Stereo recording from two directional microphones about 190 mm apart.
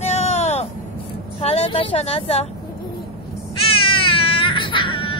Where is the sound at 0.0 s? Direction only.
35° left (ahead or behind).